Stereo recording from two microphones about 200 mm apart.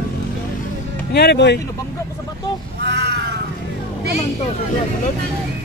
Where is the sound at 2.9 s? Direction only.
55° right (ahead or behind).